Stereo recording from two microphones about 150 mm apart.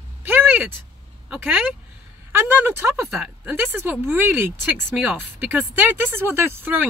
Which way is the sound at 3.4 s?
15° right (ahead or behind).